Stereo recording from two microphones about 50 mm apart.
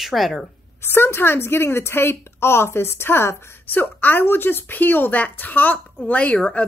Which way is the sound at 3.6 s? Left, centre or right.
Left.